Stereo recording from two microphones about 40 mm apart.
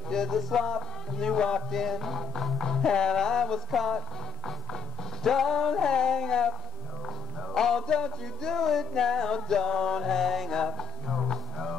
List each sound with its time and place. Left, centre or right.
0.1 s music: centre
1.7 s music: centre
5.2 s music: centre
7.5 s music: centre